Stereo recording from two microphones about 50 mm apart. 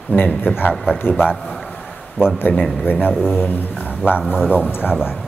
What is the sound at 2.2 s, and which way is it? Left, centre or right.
Speech, left.